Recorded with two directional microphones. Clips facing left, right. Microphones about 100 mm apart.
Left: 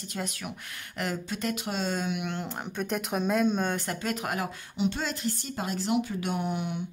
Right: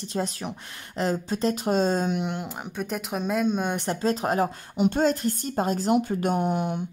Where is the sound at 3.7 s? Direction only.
25° right (ahead or behind); by 6.8 s 40° right (ahead or behind).